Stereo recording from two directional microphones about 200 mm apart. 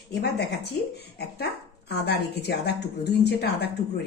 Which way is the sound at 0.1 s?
55° left (ahead or behind).